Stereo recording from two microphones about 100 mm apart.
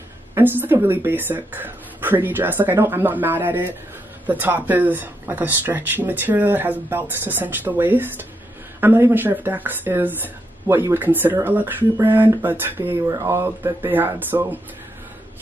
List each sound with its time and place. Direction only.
0.4 s speech: 20° right (ahead or behind)